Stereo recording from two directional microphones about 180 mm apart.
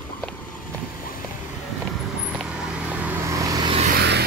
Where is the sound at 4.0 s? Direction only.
65° right (ahead or behind).